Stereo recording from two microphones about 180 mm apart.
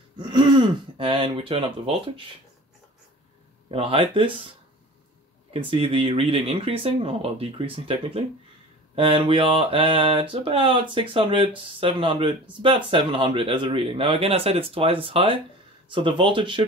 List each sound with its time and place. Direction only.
0.2 s speech: 25° right (ahead or behind)
3.7 s speech: 30° right (ahead or behind)
5.5 s speech: 30° right (ahead or behind)